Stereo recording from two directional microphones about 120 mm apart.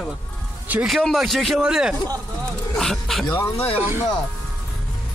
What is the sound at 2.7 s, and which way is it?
Speech, 5° left (ahead or behind).